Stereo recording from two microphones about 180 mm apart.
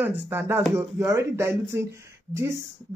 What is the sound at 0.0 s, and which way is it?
Speech, 10° right (ahead or behind).